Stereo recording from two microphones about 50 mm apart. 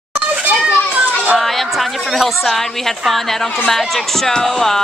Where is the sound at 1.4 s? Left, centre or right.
Centre.